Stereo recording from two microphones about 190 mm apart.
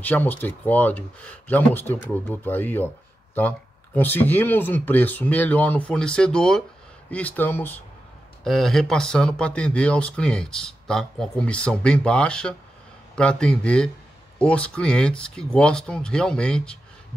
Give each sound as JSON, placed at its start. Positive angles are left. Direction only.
{"t": 0.0, "sound": "speech", "side_deg": 10}